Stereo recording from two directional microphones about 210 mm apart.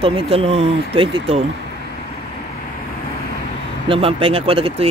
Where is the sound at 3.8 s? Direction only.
25° right (ahead or behind).